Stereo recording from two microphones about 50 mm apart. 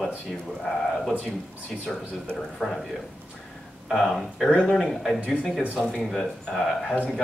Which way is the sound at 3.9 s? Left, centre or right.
Centre.